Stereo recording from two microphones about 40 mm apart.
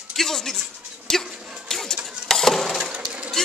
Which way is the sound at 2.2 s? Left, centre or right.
Centre.